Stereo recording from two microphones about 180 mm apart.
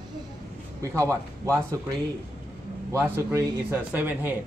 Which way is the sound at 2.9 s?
15° right (ahead or behind).